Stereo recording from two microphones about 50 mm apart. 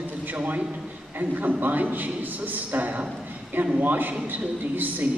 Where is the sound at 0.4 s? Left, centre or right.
Right.